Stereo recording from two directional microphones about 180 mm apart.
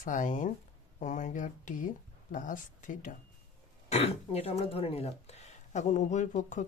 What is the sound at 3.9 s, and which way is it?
Speech, 35° left (ahead or behind).